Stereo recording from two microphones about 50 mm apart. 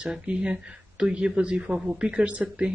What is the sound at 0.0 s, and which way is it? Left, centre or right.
Speech, right.